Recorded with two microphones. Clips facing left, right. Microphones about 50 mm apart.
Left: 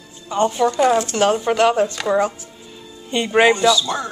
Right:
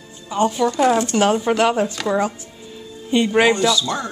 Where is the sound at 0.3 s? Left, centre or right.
Centre.